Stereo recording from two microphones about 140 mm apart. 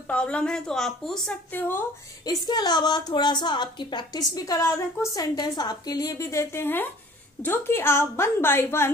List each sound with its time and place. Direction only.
0.1 s a woman's voice: 10° left (ahead or behind)
2.2 s a woman's voice: 30° left (ahead or behind)